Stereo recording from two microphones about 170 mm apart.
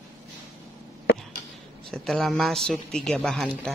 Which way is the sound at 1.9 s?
5° left (ahead or behind).